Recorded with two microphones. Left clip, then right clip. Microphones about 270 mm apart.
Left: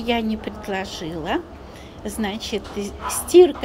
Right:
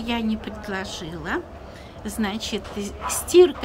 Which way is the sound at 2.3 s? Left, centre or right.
Right.